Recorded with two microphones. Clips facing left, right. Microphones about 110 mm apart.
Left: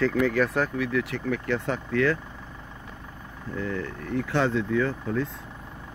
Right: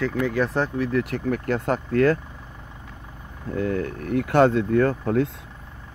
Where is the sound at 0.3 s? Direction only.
25° right (ahead or behind); by 2.1 s 45° right (ahead or behind).